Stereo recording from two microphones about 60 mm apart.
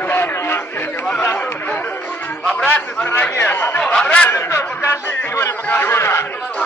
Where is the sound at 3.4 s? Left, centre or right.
Left.